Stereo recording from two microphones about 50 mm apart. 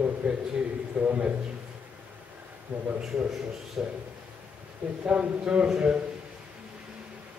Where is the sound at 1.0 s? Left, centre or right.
Right.